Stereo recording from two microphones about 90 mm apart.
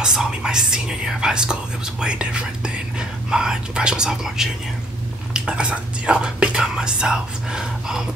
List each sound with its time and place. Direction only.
0.0 s speech: 5° right (ahead or behind)